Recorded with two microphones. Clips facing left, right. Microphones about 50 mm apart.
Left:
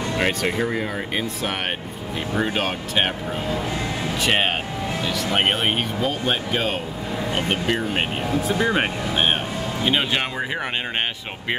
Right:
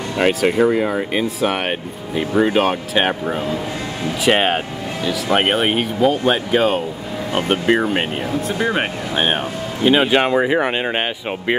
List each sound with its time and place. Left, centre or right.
0.2 s speech: centre